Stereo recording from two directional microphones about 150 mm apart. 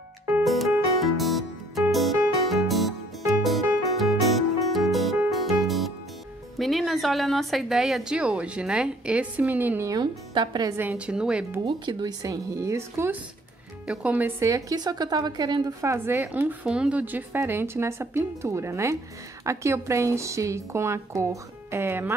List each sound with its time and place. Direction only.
0.4 s music: centre (ahead or behind)
6.6 s a woman's voice: centre (ahead or behind); by 10.7 s 30° right (ahead or behind)
10.8 s a woman's voice: 10° right (ahead or behind)
11.6 s a woman's voice: 30° right (ahead or behind)